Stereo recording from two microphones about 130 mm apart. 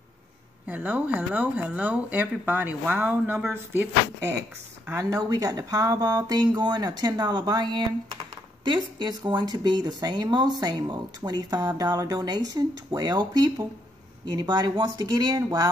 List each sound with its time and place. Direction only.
0.7 s speech: 15° right (ahead or behind)
4.9 s speech: 30° right (ahead or behind)